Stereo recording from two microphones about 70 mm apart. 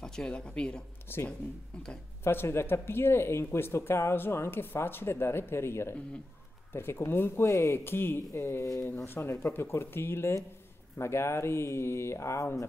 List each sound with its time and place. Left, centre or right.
0.0 s speech: centre
1.0 s speech: left